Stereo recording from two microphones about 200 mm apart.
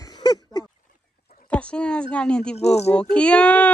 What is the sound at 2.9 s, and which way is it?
Speech, 5° left (ahead or behind).